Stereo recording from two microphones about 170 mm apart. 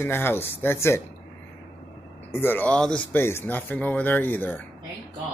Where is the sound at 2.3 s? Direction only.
10° left (ahead or behind).